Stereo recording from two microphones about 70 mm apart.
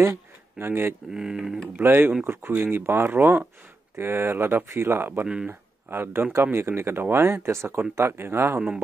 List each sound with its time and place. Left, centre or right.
0.0 s a sound: right
1.1 s speech: centre
1.8 s speech: right
5.2 s speech: centre
5.5 s speech: right
8.5 s speech: centre